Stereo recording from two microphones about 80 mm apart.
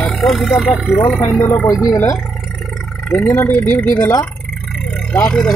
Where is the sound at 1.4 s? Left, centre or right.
Left.